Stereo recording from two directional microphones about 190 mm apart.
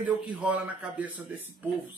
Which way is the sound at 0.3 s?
5° right (ahead or behind).